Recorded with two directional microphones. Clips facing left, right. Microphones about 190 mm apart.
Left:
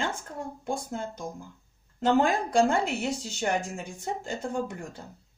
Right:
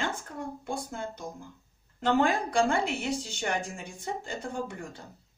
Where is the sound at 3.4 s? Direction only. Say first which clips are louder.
Left 6 dB; 45° left (ahead or behind).